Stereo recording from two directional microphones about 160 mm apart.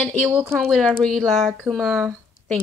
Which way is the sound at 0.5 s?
5° left (ahead or behind).